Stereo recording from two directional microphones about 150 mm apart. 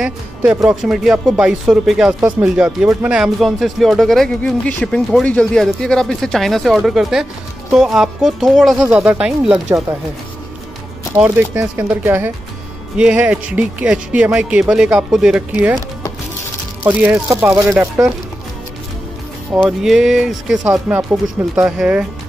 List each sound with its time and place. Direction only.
0.0 s speech: 5° right (ahead or behind)
8.7 s speech: 20° right (ahead or behind)
9.0 s speech: 10° right (ahead or behind)
11.1 s speech: 15° right (ahead or behind)
16.8 s speech: 15° right (ahead or behind)
19.5 s speech: 5° right (ahead or behind)